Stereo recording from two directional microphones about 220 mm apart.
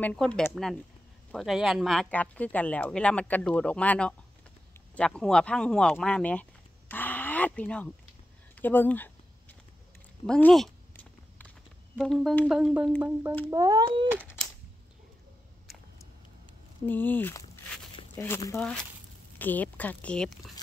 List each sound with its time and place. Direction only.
0.0 s speech: 5° left (ahead or behind)
6.9 s a sound: 10° left (ahead or behind)
8.5 s speech: 10° left (ahead or behind)
10.2 s speech: 5° left (ahead or behind)
12.0 s speech: centre (ahead or behind)
13.5 s speech: 15° right (ahead or behind)
15.6 s a sound: centre (ahead or behind)
16.8 s speech: 10° left (ahead or behind)